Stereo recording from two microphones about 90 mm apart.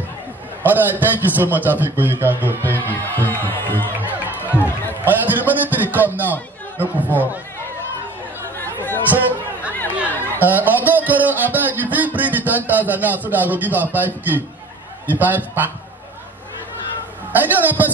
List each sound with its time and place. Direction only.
0.7 s a man's voice: 20° right (ahead or behind)
2.6 s music: 25° left (ahead or behind)
4.6 s run: 25° left (ahead or behind)
5.0 s a sound: 20° right (ahead or behind)
6.8 s a man's voice: 20° right (ahead or behind)
8.5 s chatter: 25° left (ahead or behind)
10.4 s a man's voice: 20° right (ahead or behind)
17.4 s a man's voice: 20° right (ahead or behind)